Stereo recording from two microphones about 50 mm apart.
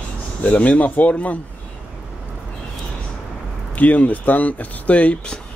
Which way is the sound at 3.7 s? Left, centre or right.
Left.